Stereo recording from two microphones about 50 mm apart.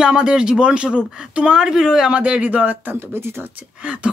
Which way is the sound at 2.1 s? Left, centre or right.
Right.